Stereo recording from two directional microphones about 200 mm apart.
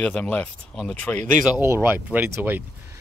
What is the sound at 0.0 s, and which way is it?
Speech, 5° left (ahead or behind).